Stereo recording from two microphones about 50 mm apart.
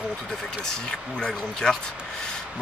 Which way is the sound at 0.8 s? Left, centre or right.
Centre.